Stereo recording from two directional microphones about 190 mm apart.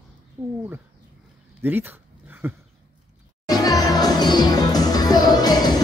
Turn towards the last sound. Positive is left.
turn(degrees=20)  # may be behind; listen again after turning